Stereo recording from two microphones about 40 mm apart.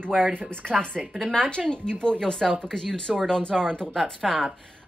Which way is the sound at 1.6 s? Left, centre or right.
Centre.